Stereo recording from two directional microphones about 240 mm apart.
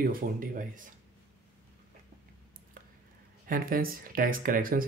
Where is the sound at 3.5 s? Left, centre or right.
Right.